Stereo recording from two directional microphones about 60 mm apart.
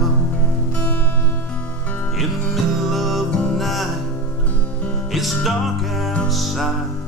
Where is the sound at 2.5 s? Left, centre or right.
Centre.